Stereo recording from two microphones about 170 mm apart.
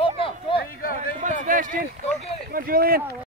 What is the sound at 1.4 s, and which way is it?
Run, 50° right (ahead or behind).